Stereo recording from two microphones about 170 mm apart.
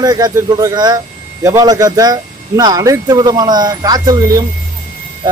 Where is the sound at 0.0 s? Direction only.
25° right (ahead or behind).